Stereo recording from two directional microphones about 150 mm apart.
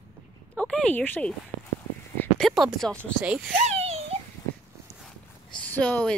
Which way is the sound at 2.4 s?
Centre (ahead or behind).